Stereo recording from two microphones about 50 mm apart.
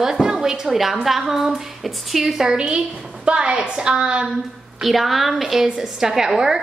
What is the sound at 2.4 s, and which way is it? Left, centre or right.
A woman's voice, centre.